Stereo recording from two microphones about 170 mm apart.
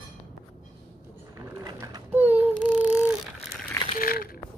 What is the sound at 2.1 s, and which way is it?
Mechanisms, 10° right (ahead or behind).